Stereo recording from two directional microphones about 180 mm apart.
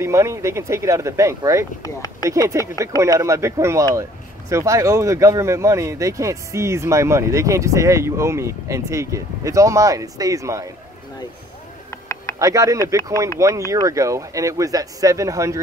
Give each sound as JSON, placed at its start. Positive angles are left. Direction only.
{"t": 0.0, "sound": "speech", "side_deg": -15}
{"t": 12.4, "sound": "speech", "side_deg": -20}